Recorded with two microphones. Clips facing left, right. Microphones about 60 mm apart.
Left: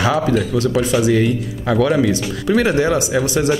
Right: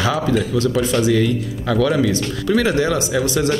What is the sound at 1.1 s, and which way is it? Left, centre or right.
Speech, left.